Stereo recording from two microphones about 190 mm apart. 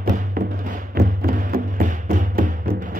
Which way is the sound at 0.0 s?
45° right (ahead or behind).